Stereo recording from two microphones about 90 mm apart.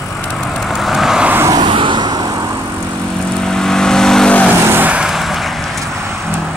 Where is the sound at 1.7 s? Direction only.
65° right (ahead or behind); by 2.5 s 50° right (ahead or behind).